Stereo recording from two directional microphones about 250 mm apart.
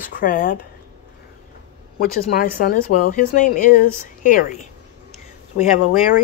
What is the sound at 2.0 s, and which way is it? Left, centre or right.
Speech, left.